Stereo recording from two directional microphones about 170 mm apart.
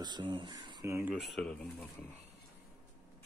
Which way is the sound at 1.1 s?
Centre (ahead or behind).